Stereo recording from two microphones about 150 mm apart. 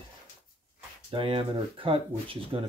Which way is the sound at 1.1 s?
35° right (ahead or behind).